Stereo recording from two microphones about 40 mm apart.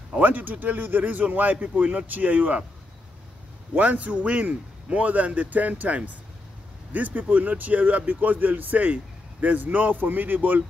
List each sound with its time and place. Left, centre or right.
0.2 s speech: right
3.7 s a man's voice: right